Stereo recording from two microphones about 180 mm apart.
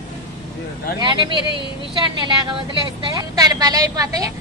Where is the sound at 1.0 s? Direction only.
25° right (ahead or behind).